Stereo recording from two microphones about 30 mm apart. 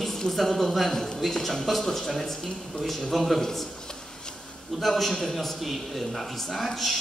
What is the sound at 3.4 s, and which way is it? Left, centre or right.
Speech, centre.